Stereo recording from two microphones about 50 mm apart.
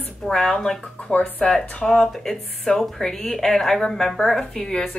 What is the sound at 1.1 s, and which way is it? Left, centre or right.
Speech, left.